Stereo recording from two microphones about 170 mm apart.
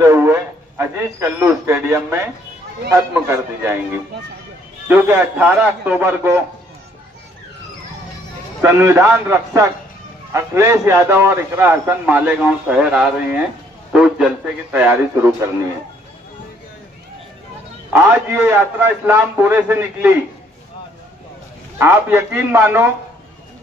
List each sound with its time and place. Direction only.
0.0 s a man's voice: 15° right (ahead or behind)
3.3 s a man's voice: 15° right (ahead or behind)
8.6 s a man's voice: 15° right (ahead or behind)
17.9 s a man's voice: 10° right (ahead or behind)
21.7 s a man's voice: 15° right (ahead or behind)